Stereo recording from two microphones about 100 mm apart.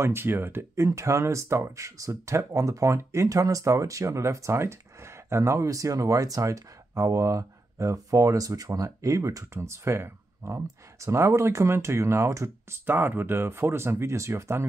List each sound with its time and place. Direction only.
0.0 s speech: 25° right (ahead or behind)